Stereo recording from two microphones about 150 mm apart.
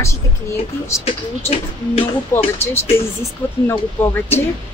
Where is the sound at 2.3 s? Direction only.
15° left (ahead or behind).